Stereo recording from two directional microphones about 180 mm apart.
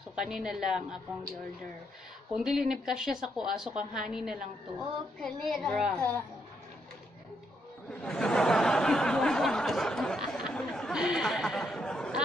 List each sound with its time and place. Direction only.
0.1 s a woman's voice: 5° right (ahead or behind)
2.3 s a woman's voice: centre (ahead or behind)
8.0 s a sound: 5° left (ahead or behind)